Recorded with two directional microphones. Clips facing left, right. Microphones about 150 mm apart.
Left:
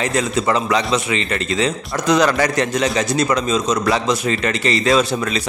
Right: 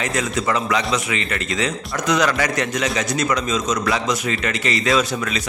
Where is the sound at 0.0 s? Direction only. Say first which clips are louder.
Left 3 dB; 30° left (ahead or behind).